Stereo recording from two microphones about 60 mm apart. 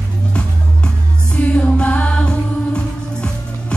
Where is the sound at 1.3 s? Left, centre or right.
Left.